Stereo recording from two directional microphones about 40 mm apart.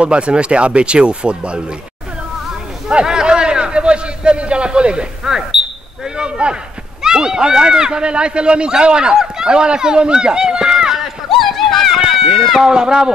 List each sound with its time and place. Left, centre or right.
0.0 s speech: right
2.9 s a sound: right
5.2 s speech: centre
6.1 s speech: right
11.2 s run: centre
12.6 s speech: centre